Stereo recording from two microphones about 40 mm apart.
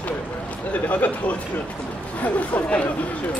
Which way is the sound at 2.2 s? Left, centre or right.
Left.